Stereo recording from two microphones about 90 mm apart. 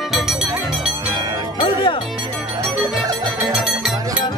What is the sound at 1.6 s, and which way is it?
Music, 75° left (ahead or behind).